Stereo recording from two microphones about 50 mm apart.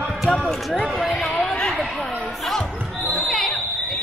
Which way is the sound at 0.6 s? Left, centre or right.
Centre.